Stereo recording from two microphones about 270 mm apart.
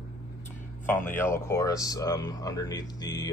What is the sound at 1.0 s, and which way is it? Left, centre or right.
Speech, centre.